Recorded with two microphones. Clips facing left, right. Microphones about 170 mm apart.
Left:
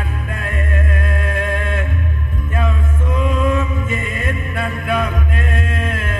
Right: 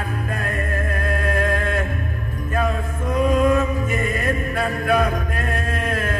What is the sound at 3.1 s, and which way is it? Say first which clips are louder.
Chant: right 2 dB; 40° right (ahead or behind).